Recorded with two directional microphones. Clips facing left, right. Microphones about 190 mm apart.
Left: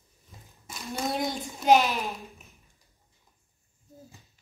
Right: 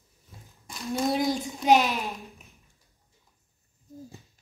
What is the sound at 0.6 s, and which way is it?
A child's voice, centre (ahead or behind).